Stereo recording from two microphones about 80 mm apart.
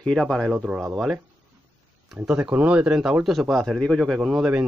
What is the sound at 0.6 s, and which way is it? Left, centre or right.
Speech, centre.